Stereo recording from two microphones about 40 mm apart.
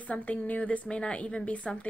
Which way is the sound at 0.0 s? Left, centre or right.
Left.